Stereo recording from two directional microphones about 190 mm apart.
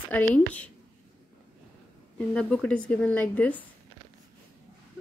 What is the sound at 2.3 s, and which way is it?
Speech, 5° left (ahead or behind).